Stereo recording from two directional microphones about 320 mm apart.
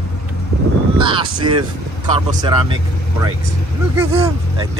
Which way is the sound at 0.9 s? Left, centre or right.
Centre.